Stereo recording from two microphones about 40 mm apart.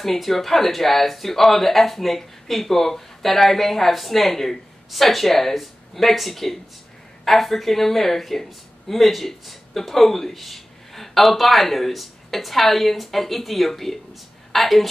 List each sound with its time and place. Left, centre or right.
0.0 s a woman's voice: centre